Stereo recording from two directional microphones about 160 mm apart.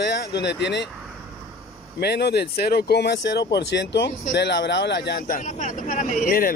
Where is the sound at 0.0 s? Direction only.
90° left.